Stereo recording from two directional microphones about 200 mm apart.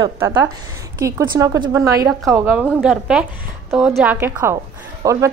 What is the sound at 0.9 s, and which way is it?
A woman's voice, 15° right (ahead or behind).